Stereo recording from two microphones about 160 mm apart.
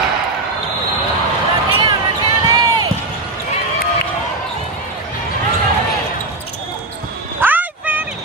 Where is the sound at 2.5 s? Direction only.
25° right (ahead or behind).